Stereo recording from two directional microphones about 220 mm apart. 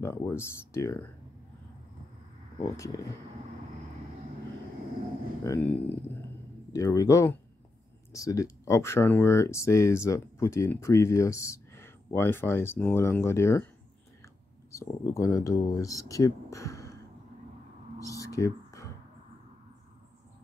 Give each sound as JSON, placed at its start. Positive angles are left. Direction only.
{"t": 0.0, "sound": "speech", "side_deg": 10}
{"t": 2.6, "sound": "speech", "side_deg": 15}
{"t": 5.4, "sound": "speech", "side_deg": 10}
{"t": 17.9, "sound": "a sound", "side_deg": 15}